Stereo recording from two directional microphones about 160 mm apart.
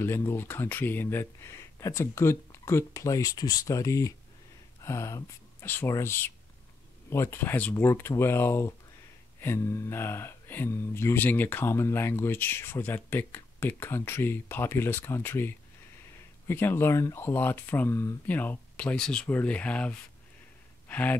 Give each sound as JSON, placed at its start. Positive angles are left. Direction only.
{"t": 0.0, "sound": "speech", "side_deg": 15}